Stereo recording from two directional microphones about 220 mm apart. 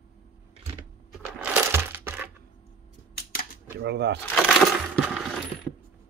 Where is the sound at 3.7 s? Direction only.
50° right (ahead or behind).